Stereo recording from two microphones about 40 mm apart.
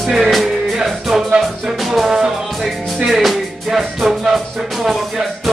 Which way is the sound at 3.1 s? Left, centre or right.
Centre.